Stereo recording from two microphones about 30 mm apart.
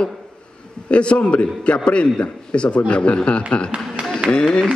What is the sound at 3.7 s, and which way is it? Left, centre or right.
Speech, right.